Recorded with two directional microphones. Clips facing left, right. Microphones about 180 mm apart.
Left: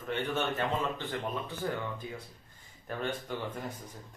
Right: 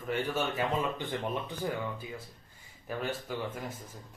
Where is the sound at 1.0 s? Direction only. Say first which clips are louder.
Right 1 dB; 15° right (ahead or behind).